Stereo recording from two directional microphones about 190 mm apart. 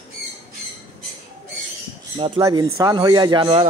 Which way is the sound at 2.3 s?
15° right (ahead or behind).